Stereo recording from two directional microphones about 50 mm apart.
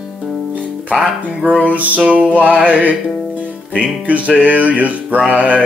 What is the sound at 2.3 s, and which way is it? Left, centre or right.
Music, right.